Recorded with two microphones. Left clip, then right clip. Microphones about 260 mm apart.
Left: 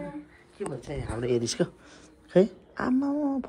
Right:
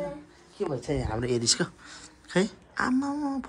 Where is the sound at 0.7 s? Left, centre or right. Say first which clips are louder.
Right 6 dB; right.